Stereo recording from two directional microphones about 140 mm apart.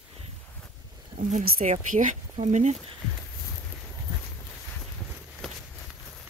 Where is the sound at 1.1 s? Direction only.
65° right (ahead or behind).